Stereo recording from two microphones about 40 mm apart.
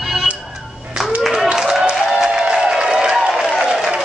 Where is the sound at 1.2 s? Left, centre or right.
Centre.